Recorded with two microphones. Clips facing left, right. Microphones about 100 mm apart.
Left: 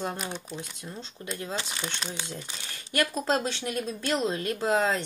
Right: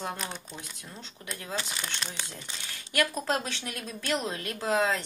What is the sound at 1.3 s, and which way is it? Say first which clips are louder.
Speech: left 1 dB; 25° left (ahead or behind).